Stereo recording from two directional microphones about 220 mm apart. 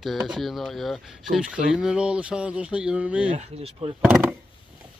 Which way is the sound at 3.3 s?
30° right (ahead or behind).